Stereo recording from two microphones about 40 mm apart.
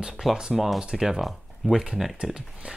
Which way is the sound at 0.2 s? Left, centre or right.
Centre.